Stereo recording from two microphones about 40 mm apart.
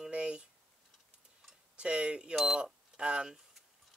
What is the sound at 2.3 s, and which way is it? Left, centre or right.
Speech, centre.